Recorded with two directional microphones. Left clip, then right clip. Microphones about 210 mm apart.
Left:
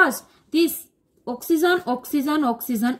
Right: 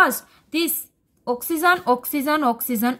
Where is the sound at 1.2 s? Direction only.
30° right (ahead or behind).